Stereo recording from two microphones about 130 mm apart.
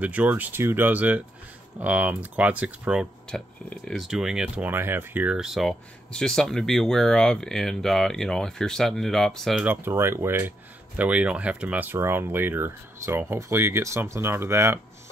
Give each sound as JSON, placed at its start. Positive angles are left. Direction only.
{"t": 0.0, "sound": "speech", "side_deg": -10}
{"t": 3.3, "sound": "speech", "side_deg": 5}
{"t": 9.7, "sound": "speech", "side_deg": -20}